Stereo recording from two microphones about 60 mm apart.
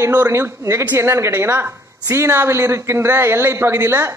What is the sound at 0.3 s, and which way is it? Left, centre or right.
A man's voice, right.